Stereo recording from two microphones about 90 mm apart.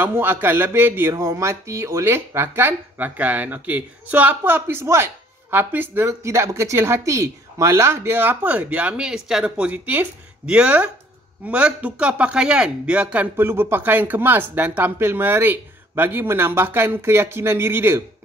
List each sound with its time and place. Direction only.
0.0 s speech: 25° right (ahead or behind)
1.1 s speech: 35° right (ahead or behind); by 13.3 s 15° right (ahead or behind)
13.4 s speech: 25° right (ahead or behind)